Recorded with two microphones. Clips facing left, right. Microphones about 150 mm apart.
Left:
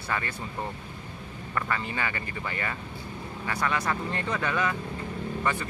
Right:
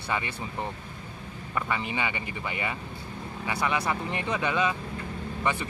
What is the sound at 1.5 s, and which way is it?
Speech, 15° right (ahead or behind).